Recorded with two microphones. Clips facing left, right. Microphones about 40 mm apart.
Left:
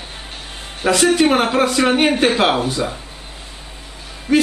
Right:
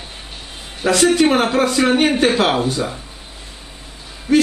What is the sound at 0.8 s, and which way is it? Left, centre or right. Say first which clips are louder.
Speech: even; centre.